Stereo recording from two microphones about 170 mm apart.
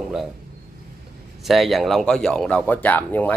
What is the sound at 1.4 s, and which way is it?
Speech, centre (ahead or behind).